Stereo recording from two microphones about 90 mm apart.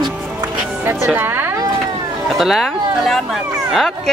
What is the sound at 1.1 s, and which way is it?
Speech, 25° right (ahead or behind).